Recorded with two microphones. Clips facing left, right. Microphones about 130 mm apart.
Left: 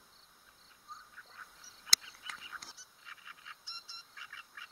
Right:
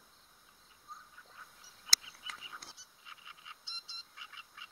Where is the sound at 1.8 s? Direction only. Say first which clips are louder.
Left 1 dB; 20° right (ahead or behind).